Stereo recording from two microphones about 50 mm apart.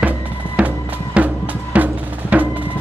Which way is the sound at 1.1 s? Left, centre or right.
Right.